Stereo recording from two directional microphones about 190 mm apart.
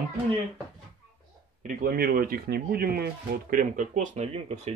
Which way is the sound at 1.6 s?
50° right (ahead or behind).